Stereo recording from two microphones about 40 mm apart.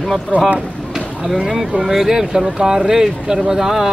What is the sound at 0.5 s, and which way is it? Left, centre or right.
Speech, centre.